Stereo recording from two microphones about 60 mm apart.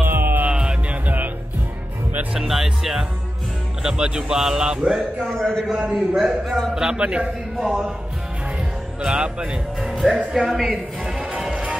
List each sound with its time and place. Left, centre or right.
0.0 s music: right
0.5 s music: centre
2.4 s a man's voice: centre
5.2 s a man's voice: centre
5.9 s a man's voice: centre
7.5 s speech: centre
9.0 s a man's voice: centre
9.8 s music: centre